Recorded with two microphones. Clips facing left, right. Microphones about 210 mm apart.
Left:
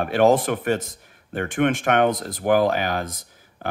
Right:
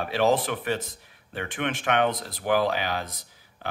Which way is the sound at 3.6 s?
50° left (ahead or behind).